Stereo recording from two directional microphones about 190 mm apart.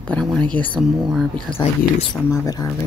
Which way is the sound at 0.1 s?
5° left (ahead or behind).